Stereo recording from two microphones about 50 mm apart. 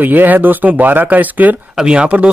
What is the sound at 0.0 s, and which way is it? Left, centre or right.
Speech, right.